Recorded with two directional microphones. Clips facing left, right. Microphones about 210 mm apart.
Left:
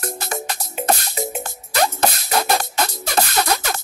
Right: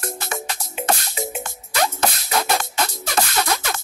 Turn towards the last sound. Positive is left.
turn(degrees=40)  # may be behind; listen again after turning